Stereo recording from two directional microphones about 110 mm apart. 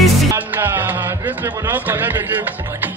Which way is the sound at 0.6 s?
20° right (ahead or behind).